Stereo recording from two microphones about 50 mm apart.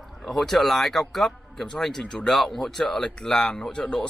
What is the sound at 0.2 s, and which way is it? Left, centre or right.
Speech, centre.